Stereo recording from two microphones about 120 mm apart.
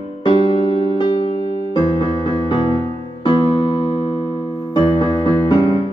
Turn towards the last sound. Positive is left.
turn(degrees=40)  # may be behind; listen again after turning